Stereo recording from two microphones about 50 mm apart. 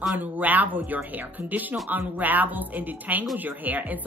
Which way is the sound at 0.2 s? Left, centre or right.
Right.